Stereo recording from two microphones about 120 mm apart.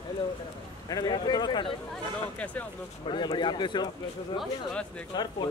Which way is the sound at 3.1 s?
40° left (ahead or behind).